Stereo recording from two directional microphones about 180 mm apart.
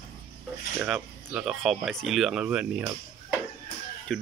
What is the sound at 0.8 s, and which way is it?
Speech, 10° right (ahead or behind).